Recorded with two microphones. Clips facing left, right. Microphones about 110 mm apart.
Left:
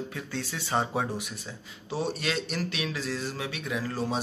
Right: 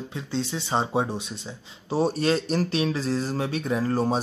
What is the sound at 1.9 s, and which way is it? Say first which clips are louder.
Speech: right 7 dB; 40° right (ahead or behind).